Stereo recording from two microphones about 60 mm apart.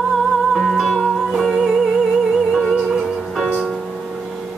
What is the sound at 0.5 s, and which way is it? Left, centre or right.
Music, centre.